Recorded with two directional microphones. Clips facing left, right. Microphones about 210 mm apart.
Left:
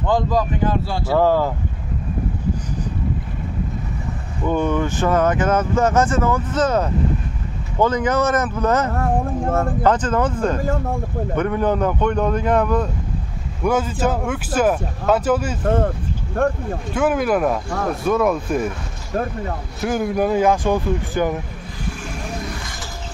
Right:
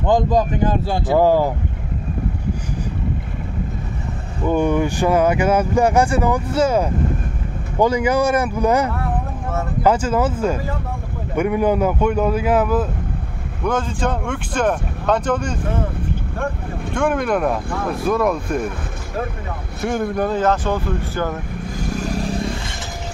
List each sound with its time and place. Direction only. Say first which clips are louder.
0.0 s speech: right 3 dB; 20° right (ahead or behind)
4.5 s speech: right 2 dB; 10° right (ahead or behind)
8.9 s a sound: left 4 dB; 50° left (ahead or behind)
9.8 s speech: right 3 dB; 10° right (ahead or behind)
13.7 s speech: left 2 dB; 5° left (ahead or behind)
16.9 s speech: left 1 dB; 5° left (ahead or behind)
19.8 s speech: left 1 dB; 5° left (ahead or behind)
21.7 s vehicle: right 7 dB; 40° right (ahead or behind)